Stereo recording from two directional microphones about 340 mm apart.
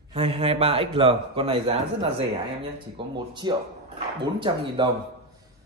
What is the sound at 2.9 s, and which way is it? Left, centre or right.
Speech, centre.